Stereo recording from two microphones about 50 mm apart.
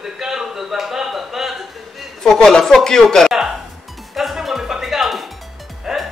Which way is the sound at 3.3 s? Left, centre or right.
Centre.